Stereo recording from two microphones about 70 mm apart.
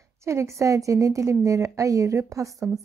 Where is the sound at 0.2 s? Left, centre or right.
Right.